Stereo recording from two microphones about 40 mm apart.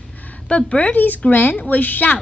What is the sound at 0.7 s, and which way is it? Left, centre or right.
Speech, left.